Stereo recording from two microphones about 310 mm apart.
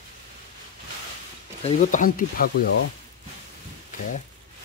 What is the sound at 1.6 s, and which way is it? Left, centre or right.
Speech, left.